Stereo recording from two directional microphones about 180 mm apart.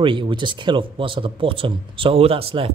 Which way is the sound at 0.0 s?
30° right (ahead or behind).